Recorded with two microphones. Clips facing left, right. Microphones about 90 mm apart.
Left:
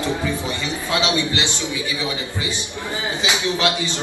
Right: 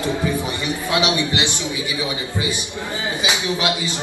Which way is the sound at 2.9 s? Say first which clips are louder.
Even; 25° left (ahead or behind).